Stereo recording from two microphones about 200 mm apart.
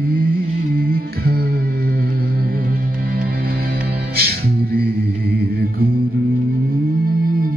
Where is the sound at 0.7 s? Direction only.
50° right (ahead or behind).